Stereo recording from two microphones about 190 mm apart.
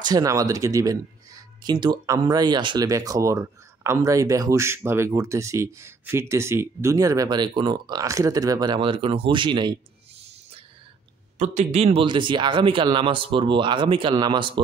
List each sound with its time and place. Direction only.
0.0 s speech: 20° right (ahead or behind)
11.3 s a man's voice: 35° right (ahead or behind)